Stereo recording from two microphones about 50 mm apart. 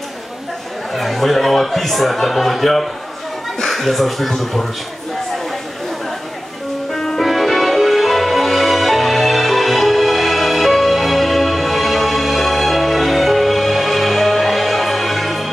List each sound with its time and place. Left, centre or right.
0.9 s a man's voice: centre
6.9 s music: centre